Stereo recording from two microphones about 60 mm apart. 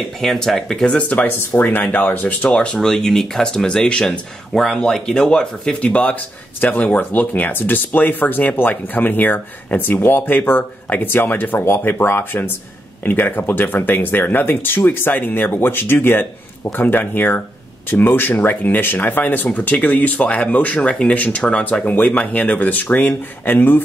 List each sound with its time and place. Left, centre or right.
0.2 s speech: centre
0.9 s speech: left
2.5 s speech: centre; by 23.8 s left